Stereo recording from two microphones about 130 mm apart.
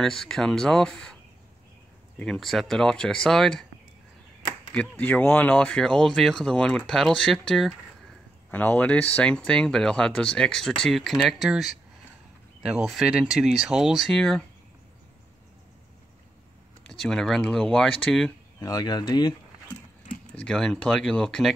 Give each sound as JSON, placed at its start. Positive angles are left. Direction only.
{"t": 0.0, "sound": "speech", "side_deg": 5}
{"t": 2.2, "sound": "speech", "side_deg": 0}
{"t": 4.7, "sound": "speech", "side_deg": 10}
{"t": 17.0, "sound": "speech", "side_deg": 5}
{"t": 18.6, "sound": "speech", "side_deg": 30}
{"t": 20.3, "sound": "speech", "side_deg": 5}